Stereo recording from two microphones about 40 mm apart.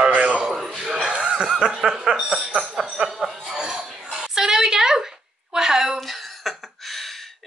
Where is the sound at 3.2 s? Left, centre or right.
Centre.